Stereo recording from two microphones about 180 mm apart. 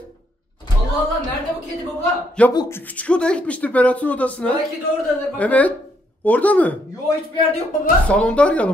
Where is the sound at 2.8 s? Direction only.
10° left (ahead or behind).